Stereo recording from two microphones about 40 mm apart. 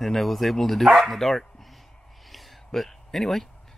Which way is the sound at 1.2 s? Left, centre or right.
Centre.